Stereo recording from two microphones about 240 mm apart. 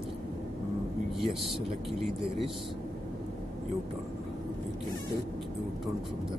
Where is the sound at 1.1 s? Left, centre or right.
Centre.